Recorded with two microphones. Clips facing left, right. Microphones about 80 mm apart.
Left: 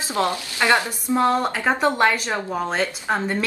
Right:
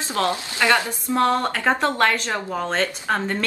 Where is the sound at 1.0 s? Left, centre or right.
Centre.